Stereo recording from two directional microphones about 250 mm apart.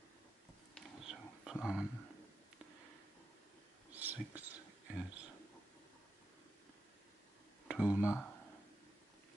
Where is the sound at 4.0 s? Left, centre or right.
Centre.